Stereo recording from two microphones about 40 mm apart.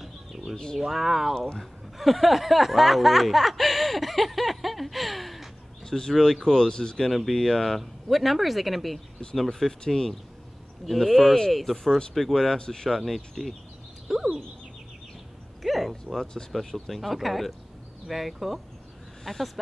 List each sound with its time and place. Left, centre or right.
0.7 s speech: centre
5.9 s speech: centre
7.1 s speech: centre
12.9 s speech: centre
14.0 s a sound: centre
15.6 s speech: centre